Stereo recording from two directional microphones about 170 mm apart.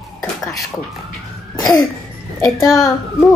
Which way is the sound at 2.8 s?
20° left (ahead or behind).